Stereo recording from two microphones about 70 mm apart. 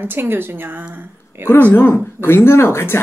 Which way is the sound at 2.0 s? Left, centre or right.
Left.